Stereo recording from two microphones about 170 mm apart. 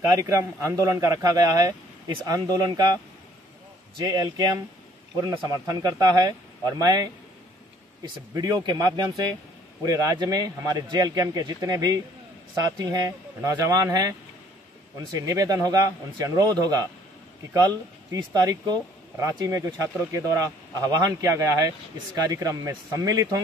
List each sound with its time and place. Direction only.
0.1 s speech: 20° right (ahead or behind)
4.0 s speech: 20° right (ahead or behind)